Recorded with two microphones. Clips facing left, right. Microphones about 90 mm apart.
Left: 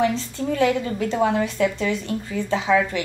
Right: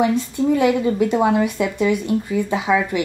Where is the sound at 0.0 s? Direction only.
15° right (ahead or behind).